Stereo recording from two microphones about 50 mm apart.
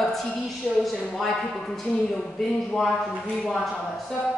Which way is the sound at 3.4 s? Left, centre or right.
Centre.